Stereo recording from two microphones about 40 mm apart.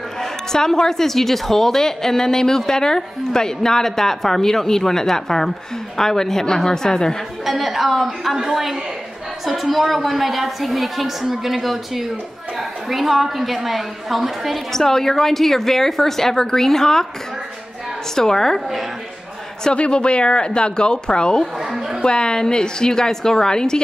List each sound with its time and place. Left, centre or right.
0.2 s a woman's voice: centre
7.4 s a woman's voice: centre
14.7 s a woman's voice: centre
18.1 s a woman's voice: centre
19.7 s a woman's voice: left